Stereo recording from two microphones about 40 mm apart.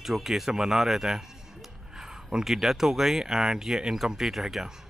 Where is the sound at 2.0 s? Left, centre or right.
Centre.